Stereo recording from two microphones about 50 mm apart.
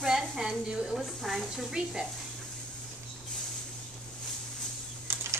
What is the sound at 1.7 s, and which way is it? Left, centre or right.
Speech, centre.